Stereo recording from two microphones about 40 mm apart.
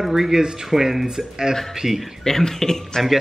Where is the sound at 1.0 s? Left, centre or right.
Centre.